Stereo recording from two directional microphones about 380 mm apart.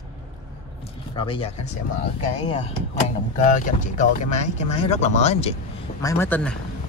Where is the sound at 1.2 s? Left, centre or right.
Centre.